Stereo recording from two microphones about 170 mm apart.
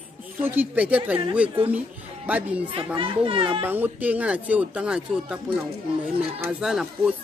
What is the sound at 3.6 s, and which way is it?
Speech, 10° right (ahead or behind).